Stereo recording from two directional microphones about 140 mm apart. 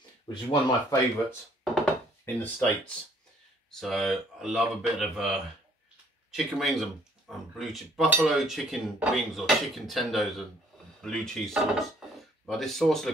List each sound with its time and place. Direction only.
0.3 s speech: 30° left (ahead or behind)
1.6 s chopping: centre (ahead or behind)
2.2 s speech: 15° left (ahead or behind)
3.7 s speech: centre (ahead or behind)
6.3 s speech: centre (ahead or behind)